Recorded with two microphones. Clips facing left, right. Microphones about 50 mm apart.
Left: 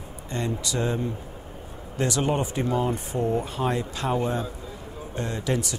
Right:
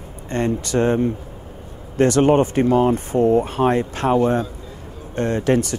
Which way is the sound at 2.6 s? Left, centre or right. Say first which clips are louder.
Right 9 dB; right.